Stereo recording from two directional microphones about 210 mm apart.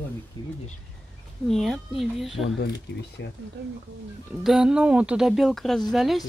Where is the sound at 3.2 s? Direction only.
55° left (ahead or behind).